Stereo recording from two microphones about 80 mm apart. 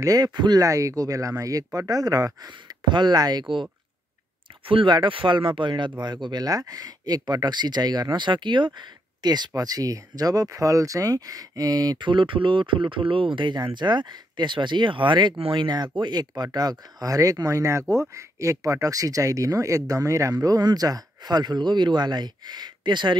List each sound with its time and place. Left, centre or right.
0.0 s speech: right
0.6 s speech: right
4.6 s speech: right
9.6 s speech: right
12.1 s speech: right
13.6 s speech: right
15.5 s speech: right